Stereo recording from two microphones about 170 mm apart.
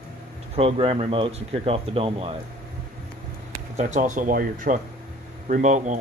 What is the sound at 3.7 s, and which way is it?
Speech, 45° right (ahead or behind).